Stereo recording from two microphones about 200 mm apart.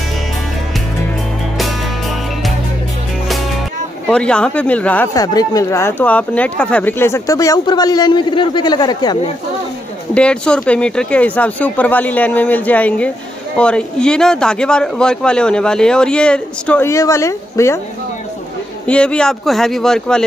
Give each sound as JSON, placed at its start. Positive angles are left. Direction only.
{"t": 4.1, "sound": "speech", "side_deg": 5}
{"t": 10.1, "sound": "a man's voice", "side_deg": 5}
{"t": 18.9, "sound": "a man's voice", "side_deg": 5}